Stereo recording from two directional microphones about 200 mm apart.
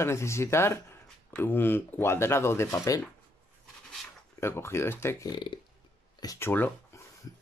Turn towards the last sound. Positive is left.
turn(degrees=10)  # may be behind; listen again after turning